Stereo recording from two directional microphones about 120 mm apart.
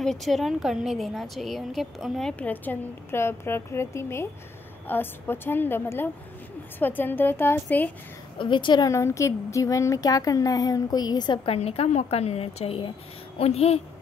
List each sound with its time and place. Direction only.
0.0 s a woman's voice: 5° left (ahead or behind)
8.4 s a woman's voice: 40° left (ahead or behind)
8.8 s speech: 25° left (ahead or behind)
11.4 s a woman's voice: 55° left (ahead or behind)